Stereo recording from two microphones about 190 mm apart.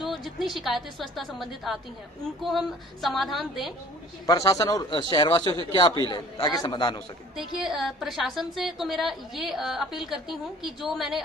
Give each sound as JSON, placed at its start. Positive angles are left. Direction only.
{"t": 0.0, "sound": "a woman's voice", "side_deg": 0}
{"t": 4.3, "sound": "a man's voice", "side_deg": 20}
{"t": 7.3, "sound": "a woman's voice", "side_deg": 0}